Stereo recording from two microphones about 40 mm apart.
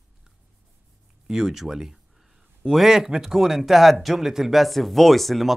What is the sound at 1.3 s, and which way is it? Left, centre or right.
Speech, centre.